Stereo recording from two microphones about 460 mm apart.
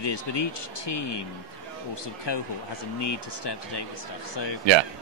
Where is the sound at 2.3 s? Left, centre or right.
Left.